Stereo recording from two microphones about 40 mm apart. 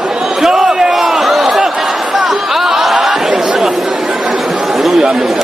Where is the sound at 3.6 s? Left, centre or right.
Centre.